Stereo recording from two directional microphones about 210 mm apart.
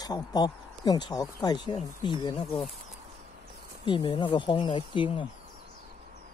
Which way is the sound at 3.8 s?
25° left (ahead or behind).